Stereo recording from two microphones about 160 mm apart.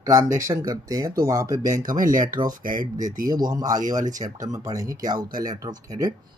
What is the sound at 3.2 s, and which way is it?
Speech, 25° right (ahead or behind).